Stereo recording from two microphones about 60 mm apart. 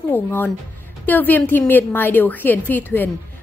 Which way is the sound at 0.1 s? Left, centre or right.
Left.